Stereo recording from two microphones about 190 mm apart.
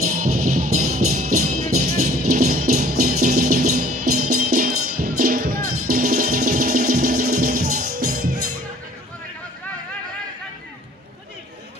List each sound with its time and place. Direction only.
0.0 s music: 45° right (ahead or behind)